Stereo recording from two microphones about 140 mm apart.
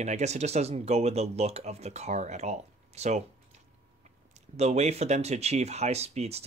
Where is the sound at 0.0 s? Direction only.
55° right (ahead or behind).